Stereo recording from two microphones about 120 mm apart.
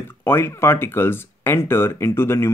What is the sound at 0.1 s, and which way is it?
Speech, 20° left (ahead or behind).